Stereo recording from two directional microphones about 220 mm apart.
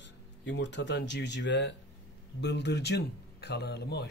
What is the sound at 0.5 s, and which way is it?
A man's voice, 55° left (ahead or behind).